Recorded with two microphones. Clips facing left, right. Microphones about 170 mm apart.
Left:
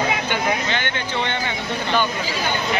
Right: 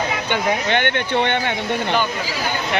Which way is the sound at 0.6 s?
60° right (ahead or behind).